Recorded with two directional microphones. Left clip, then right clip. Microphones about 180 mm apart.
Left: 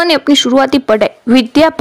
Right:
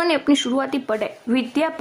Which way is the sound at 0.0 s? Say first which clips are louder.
Left 9 dB; 35° left (ahead or behind).